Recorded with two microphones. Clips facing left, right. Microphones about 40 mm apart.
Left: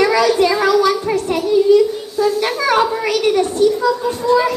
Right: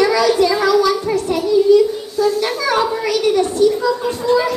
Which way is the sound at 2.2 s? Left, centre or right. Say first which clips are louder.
Left 1 dB; left.